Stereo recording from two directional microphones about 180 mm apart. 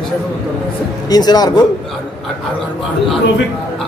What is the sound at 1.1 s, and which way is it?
Speech, 20° left (ahead or behind).